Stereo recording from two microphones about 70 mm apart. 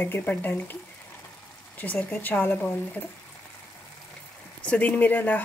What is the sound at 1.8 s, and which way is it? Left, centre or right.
Speech, left.